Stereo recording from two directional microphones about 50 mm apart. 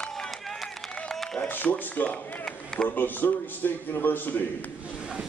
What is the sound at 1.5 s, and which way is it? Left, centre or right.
Speech, left.